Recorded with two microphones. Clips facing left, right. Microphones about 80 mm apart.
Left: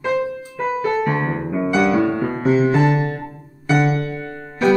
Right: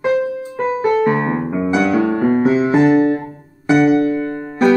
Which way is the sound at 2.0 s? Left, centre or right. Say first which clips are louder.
Right 4 dB; right.